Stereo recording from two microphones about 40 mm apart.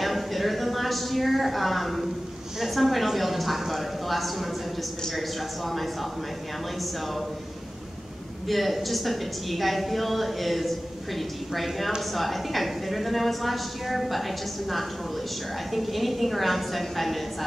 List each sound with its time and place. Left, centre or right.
0.0 s a sound: centre
2.6 s a woman's voice: centre
8.5 s a woman's voice: centre